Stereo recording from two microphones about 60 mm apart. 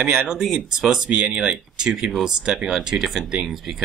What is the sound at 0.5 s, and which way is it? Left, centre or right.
Speech, centre.